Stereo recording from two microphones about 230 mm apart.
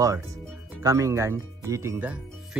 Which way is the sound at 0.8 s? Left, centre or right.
Centre.